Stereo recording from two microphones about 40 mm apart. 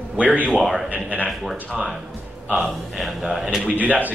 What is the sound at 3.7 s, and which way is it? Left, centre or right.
Speech, right.